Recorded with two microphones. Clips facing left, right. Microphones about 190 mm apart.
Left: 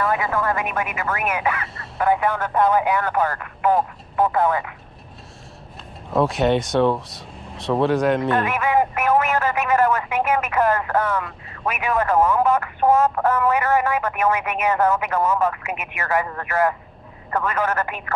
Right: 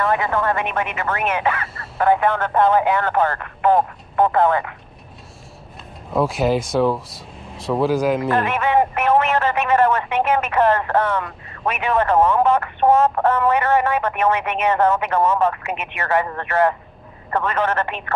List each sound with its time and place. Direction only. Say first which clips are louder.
0.0 s speech: right 2 dB; 25° right (ahead or behind)
2.0 s speech: right 3 dB; 55° right (ahead or behind)
2.4 s speech: right 1 dB; 30° right (ahead or behind)
4.2 s speech: right 3 dB; 55° right (ahead or behind)
6.1 s speech: even; centre (ahead or behind)
8.3 s speech: right 1 dB; 25° right (ahead or behind)